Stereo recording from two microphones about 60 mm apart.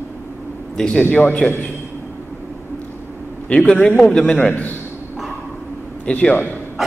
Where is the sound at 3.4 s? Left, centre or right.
Centre.